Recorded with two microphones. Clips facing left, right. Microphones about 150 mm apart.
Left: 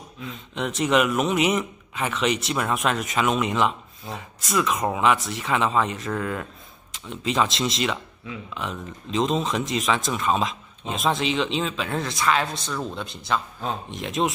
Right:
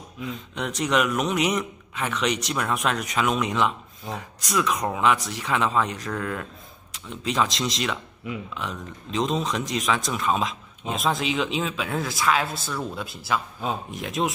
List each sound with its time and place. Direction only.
0.2 s speech: centre (ahead or behind)